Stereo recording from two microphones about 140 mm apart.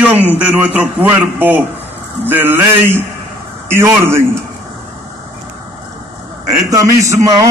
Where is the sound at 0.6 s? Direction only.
15° right (ahead or behind).